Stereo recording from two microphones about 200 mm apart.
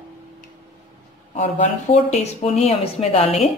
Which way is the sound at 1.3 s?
35° left (ahead or behind).